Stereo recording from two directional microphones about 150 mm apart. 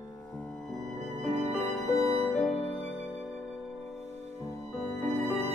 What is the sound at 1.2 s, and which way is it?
Music, 10° left (ahead or behind).